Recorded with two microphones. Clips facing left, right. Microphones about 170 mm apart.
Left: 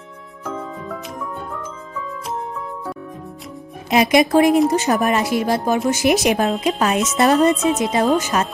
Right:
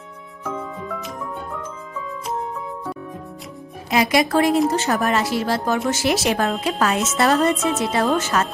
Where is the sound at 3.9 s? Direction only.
20° left (ahead or behind).